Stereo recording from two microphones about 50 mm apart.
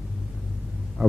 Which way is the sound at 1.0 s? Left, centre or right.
Centre.